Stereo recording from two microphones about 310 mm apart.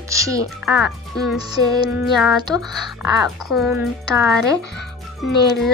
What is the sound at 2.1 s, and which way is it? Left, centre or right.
Speech, centre.